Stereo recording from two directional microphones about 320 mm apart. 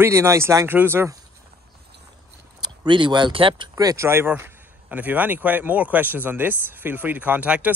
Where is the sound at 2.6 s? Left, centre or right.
Centre.